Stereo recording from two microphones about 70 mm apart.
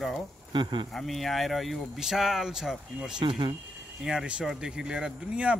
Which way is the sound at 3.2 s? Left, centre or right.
Right.